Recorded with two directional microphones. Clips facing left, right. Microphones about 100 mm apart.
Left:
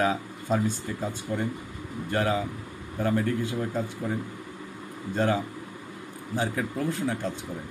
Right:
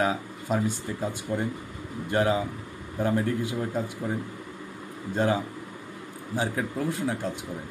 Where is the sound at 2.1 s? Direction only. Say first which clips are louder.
Right 2 dB; 20° right (ahead or behind).